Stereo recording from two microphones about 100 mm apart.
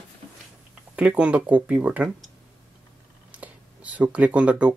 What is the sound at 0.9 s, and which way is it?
Speech, 10° right (ahead or behind).